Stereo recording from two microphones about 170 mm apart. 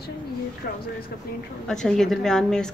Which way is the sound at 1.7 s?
5° left (ahead or behind).